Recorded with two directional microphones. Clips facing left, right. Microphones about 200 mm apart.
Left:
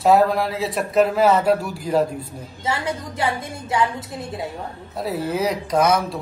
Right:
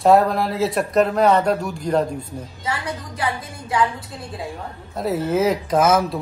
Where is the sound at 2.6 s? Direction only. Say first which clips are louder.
Left 4 dB; 25° left (ahead or behind).